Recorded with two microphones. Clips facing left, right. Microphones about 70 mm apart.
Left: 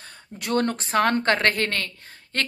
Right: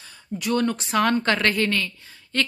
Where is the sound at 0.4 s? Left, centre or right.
Left.